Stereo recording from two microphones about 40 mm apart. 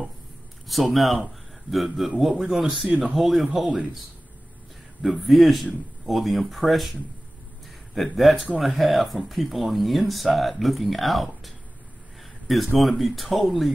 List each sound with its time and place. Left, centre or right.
0.7 s a man's voice: centre
5.0 s speech: centre